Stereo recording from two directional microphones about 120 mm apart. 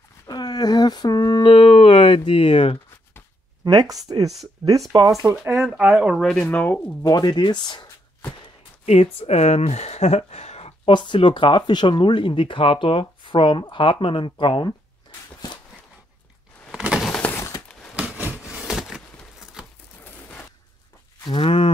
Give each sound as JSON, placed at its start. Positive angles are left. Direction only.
{"t": 0.3, "sound": "speech", "side_deg": 35}
{"t": 1.5, "sound": "speech", "side_deg": 45}
{"t": 3.6, "sound": "speech", "side_deg": -30}
{"t": 5.2, "sound": "speech", "side_deg": -15}
{"t": 6.1, "sound": "speech", "side_deg": 5}
{"t": 7.0, "sound": "speech", "side_deg": 35}
{"t": 8.8, "sound": "speech", "side_deg": 60}
{"t": 10.9, "sound": "speech", "side_deg": 40}
{"t": 16.7, "sound": "a sound", "side_deg": -5}
{"t": 21.3, "sound": "speech", "side_deg": 50}